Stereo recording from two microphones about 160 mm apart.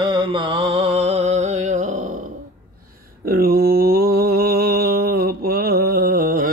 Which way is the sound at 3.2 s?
70° right (ahead or behind).